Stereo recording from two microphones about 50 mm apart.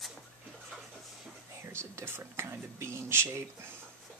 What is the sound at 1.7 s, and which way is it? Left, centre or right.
Whispering, right.